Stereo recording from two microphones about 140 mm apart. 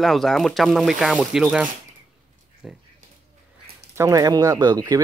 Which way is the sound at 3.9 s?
20° right (ahead or behind).